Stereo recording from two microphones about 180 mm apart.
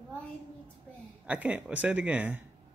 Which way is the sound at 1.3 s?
5° right (ahead or behind).